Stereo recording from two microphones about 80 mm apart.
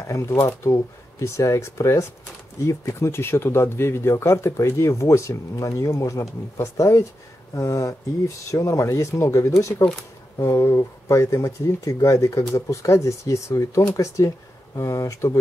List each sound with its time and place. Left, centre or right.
0.1 s speech: left